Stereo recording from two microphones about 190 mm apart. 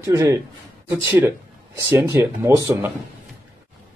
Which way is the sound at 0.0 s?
15° right (ahead or behind).